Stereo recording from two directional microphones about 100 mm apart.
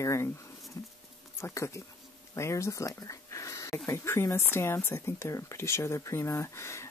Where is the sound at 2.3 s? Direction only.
30° left (ahead or behind).